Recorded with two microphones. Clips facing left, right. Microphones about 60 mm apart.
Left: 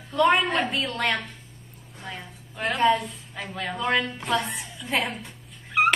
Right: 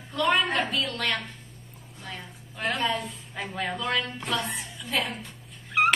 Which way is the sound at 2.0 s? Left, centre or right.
Centre.